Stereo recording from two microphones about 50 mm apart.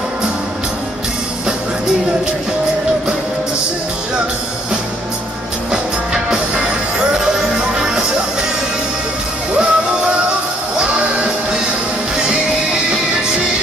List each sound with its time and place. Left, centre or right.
5.7 s music: centre
9.5 s music: centre